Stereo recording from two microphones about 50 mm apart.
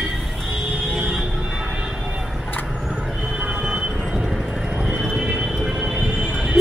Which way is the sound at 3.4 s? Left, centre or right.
Right.